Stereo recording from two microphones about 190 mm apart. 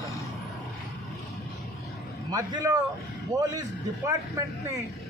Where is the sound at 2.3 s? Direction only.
20° right (ahead or behind).